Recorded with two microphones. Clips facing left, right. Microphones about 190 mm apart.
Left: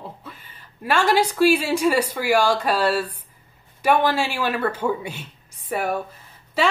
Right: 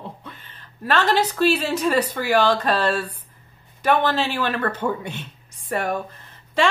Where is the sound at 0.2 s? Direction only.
5° left (ahead or behind).